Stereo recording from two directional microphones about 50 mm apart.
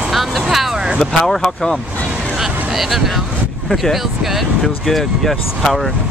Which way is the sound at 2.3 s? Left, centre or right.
Centre.